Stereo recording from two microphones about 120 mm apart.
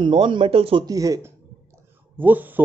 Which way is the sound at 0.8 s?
30° right (ahead or behind).